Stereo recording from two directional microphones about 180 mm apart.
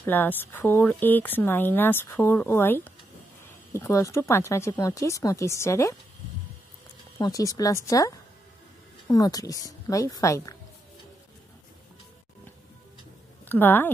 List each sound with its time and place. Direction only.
0.0 s speech: 10° left (ahead or behind)
7.2 s a woman's voice: 20° left (ahead or behind)
13.5 s speech: 10° left (ahead or behind)